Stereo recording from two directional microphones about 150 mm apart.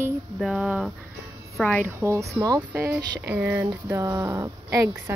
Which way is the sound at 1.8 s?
20° right (ahead or behind).